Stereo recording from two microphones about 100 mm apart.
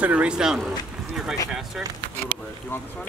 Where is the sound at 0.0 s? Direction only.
15° right (ahead or behind).